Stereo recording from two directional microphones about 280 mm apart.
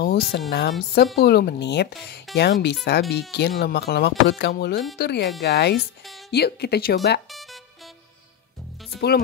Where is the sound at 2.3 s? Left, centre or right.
Centre.